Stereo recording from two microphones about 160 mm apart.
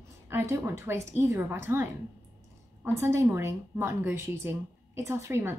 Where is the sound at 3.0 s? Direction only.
15° right (ahead or behind).